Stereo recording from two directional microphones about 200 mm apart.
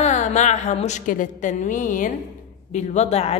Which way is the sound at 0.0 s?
35° left (ahead or behind).